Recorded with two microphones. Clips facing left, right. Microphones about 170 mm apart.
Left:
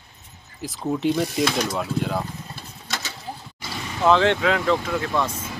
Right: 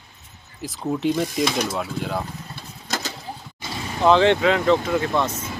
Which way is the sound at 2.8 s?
40° right (ahead or behind).